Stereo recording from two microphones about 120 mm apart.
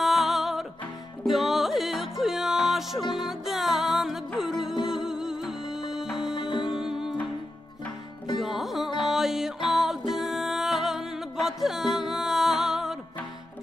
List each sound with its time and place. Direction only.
0.0 s music: centre (ahead or behind)
6.3 s music: 40° left (ahead or behind)
6.7 s music: 5° right (ahead or behind)
8.4 s music: centre (ahead or behind)